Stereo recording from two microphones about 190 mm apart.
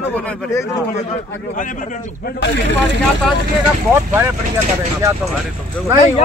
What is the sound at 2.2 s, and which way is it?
Speech, 65° left (ahead or behind).